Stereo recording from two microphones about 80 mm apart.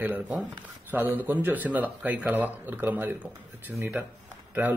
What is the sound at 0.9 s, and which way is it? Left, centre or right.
Speech, right.